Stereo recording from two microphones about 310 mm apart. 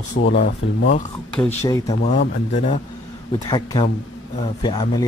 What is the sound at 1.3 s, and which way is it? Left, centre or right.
Speech, centre.